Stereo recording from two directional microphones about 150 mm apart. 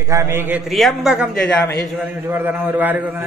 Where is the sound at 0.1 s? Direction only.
20° right (ahead or behind).